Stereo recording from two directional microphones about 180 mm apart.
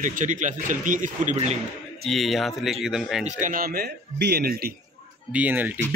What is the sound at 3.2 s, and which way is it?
Speech, 50° right (ahead or behind).